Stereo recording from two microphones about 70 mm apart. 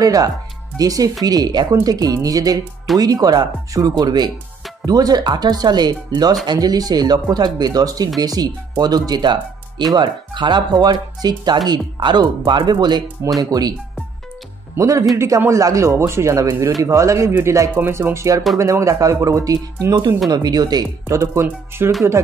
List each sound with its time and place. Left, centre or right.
0.0 s speech: right
1.7 s speech: right
4.0 s speech: right
4.8 s speech: right
13.4 s speech: right
14.8 s speech: right
20.2 s speech: right
21.1 s speech: right